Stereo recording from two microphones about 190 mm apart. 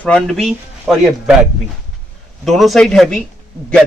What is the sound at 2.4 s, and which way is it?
Speech, centre (ahead or behind).